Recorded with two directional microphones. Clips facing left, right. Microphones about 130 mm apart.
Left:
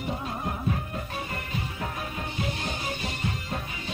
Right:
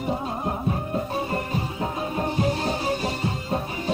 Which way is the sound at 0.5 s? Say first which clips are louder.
Right 5 dB; 30° right (ahead or behind).